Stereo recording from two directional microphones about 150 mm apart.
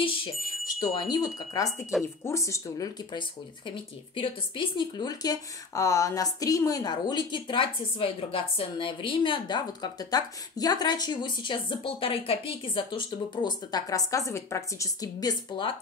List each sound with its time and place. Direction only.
0.7 s speech: 25° left (ahead or behind)